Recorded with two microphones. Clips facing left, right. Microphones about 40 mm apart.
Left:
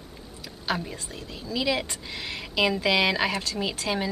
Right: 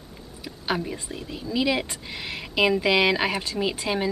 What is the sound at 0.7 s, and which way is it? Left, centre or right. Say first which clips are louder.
Speech: right 2 dB; centre.